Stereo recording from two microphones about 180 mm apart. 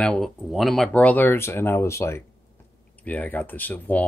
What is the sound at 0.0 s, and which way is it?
Speech, 5° left (ahead or behind).